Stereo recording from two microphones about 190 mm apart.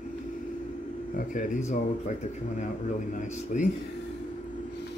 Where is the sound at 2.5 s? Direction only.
40° left (ahead or behind).